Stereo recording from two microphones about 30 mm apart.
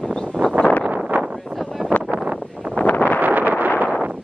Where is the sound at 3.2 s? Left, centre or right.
Right.